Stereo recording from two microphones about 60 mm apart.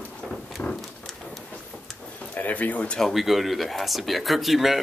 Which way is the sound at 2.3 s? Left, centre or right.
Left.